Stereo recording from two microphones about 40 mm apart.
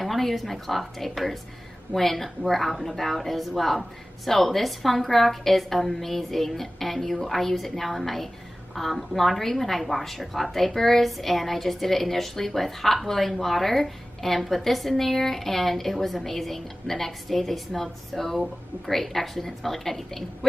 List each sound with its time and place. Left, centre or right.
0.0 s a woman's voice: centre